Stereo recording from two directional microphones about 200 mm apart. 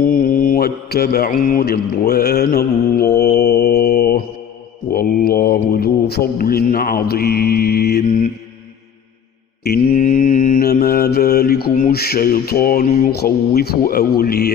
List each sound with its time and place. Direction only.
0.0 s mantra: 45° left (ahead or behind)
9.6 s mantra: 45° left (ahead or behind)